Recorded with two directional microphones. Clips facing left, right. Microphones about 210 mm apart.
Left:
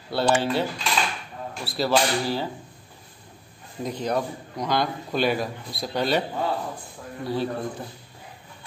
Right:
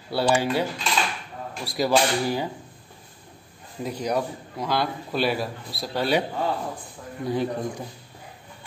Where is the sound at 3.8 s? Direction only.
10° right (ahead or behind).